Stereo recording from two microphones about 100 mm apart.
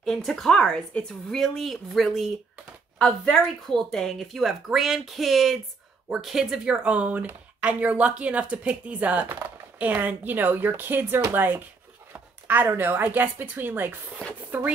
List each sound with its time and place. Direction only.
0.0 s a woman's voice: centre (ahead or behind); by 13.9 s 20° right (ahead or behind)